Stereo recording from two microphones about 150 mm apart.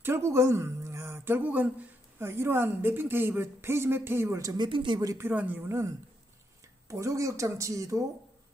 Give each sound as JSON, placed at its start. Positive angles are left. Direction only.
{"t": 0.0, "sound": "speech", "side_deg": -15}
{"t": 5.1, "sound": "speech", "side_deg": -10}